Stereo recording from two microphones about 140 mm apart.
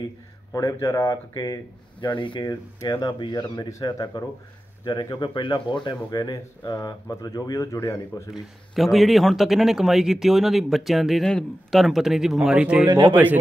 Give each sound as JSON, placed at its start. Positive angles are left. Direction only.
{"t": 0.5, "sound": "speech", "side_deg": 25}
{"t": 2.8, "sound": "speech", "side_deg": 25}
{"t": 8.3, "sound": "a man's voice", "side_deg": 0}